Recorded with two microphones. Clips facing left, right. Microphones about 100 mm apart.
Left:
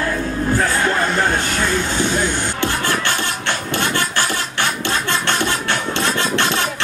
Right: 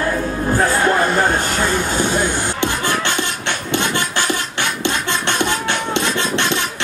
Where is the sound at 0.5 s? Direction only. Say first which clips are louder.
Right 3 dB; 15° right (ahead or behind).